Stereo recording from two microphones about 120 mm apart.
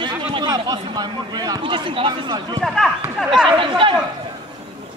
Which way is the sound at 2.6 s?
Centre (ahead or behind).